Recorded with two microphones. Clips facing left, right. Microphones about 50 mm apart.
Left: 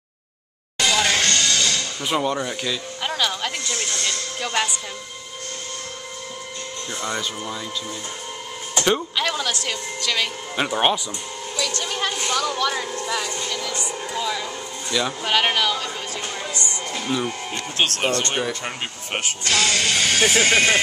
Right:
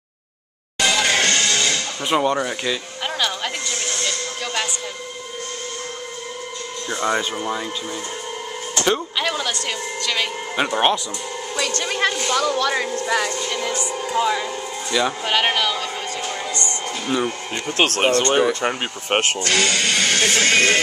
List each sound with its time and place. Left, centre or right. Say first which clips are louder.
0.7 s music: right 1 dB; centre
1.1 s music: right 2 dB; centre
3.0 s a sound: left 2 dB; centre
4.0 s music: right 1 dB; centre
6.9 s speech: right 6 dB; right
8.8 s speech: right 1 dB; centre
11.5 s music: right 2 dB; right
11.8 s speech: right 4 dB; right
13.0 s speech: right 5 dB; right
13.6 s speech: right 4 dB; right; by 15.9 s centre
17.1 s speech: right 3 dB; centre
17.7 s speech: right 4 dB; right
19.4 s speech: right 1 dB; centre